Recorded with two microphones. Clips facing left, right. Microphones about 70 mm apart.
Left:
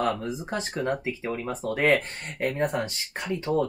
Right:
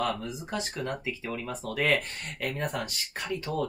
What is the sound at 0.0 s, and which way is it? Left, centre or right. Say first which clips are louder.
Speech: left 4 dB; left.